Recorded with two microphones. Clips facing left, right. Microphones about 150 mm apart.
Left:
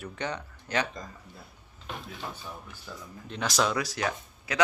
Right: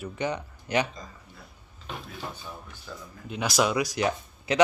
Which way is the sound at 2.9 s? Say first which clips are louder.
Right 2 dB; centre (ahead or behind).